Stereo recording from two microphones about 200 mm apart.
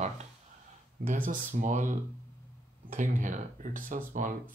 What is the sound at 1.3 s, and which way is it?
Speech, 40° right (ahead or behind).